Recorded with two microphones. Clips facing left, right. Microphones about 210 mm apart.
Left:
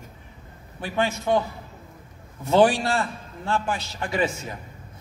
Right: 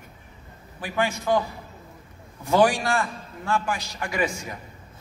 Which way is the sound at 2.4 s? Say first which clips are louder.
Left 2 dB; 25° left (ahead or behind).